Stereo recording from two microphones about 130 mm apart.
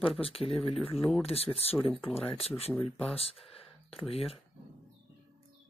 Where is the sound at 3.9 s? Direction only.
50° left (ahead or behind).